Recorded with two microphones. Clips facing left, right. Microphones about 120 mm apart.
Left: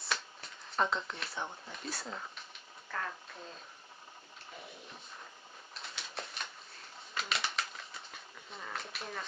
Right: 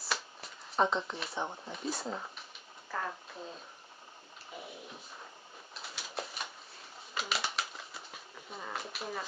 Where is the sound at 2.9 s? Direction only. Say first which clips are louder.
Right 2 dB; 10° right (ahead or behind).